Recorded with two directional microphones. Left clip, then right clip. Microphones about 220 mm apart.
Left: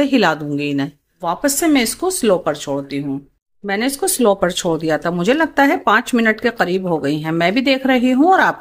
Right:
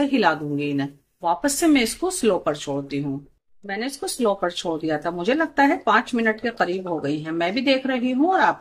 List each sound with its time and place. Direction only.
0.0 s speech: 40° left (ahead or behind)